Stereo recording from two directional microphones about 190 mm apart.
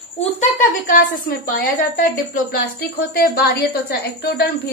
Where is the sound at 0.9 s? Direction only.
50° left (ahead or behind).